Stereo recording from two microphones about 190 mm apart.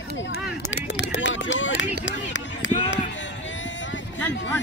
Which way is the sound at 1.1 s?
75° left (ahead or behind).